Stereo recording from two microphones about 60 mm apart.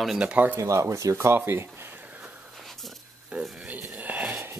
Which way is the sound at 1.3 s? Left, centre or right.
Right.